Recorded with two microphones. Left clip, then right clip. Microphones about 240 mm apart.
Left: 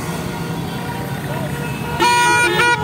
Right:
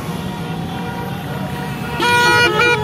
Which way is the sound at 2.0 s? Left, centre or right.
Left.